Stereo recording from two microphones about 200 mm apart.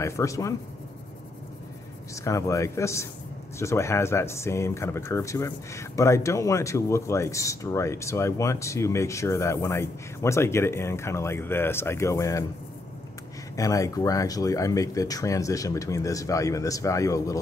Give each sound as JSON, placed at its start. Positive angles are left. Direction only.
{"t": 0.0, "sound": "speech", "side_deg": 15}
{"t": 2.2, "sound": "speech", "side_deg": 15}
{"t": 13.6, "sound": "speech", "side_deg": 15}